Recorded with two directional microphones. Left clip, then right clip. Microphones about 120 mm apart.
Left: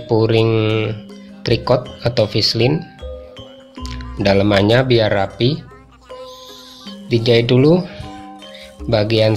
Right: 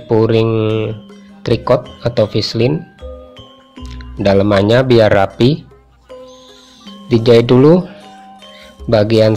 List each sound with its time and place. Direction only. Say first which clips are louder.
0.1 s speech: right 2 dB; 40° right (ahead or behind)
3.8 s speech: right 3 dB; 40° right (ahead or behind)
7.1 s speech: right 5 dB; 50° right (ahead or behind)
8.8 s speech: right 4 dB; 45° right (ahead or behind)